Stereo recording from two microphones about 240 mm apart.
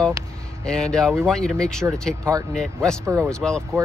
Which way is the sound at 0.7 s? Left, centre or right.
Centre.